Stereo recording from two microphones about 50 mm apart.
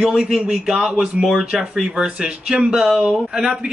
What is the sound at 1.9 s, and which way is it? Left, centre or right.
Speech, centre.